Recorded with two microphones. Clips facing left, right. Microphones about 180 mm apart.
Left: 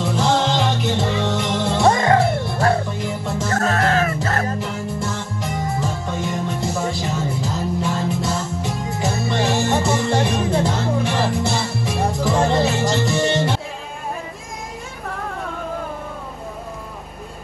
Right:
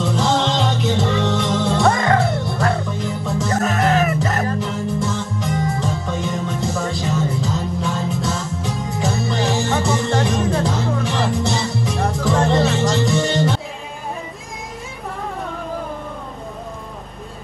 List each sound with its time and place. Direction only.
0.0 s music: centre (ahead or behind)
1.9 s music: 25° left (ahead or behind)
3.0 s music: centre (ahead or behind)
3.6 s music: 20° right (ahead or behind)
4.6 s music: centre (ahead or behind)